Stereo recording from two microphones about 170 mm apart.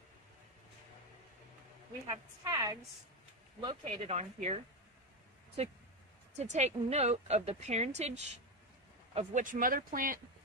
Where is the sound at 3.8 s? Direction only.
40° right (ahead or behind).